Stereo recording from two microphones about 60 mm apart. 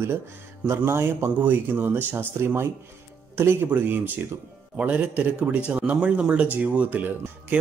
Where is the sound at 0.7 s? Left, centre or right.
Right.